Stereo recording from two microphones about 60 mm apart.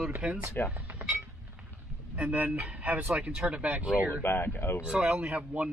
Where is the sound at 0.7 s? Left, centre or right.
Right.